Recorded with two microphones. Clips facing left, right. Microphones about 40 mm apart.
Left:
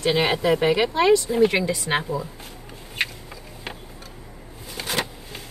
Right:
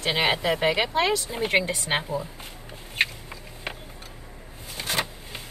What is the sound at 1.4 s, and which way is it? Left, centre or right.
Speech, right.